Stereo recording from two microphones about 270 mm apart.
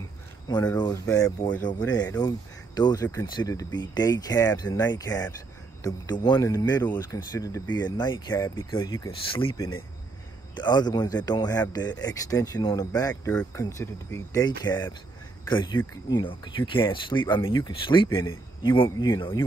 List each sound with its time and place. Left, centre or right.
0.5 s speech: centre